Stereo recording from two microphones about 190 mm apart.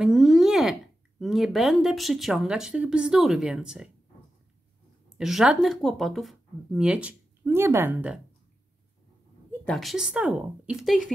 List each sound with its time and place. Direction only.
0.0 s a sound: centre (ahead or behind)
1.2 s speech: centre (ahead or behind)
5.1 s speech: 5° right (ahead or behind)
9.5 s speech: 5° left (ahead or behind)